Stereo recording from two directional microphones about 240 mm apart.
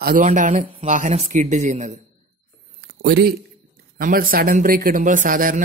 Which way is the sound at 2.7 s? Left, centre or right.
Right.